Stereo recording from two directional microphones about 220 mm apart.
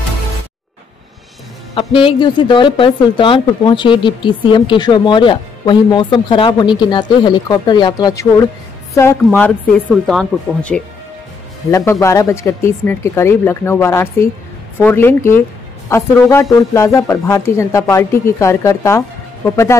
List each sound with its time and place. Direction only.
1.8 s speech: 25° left (ahead or behind)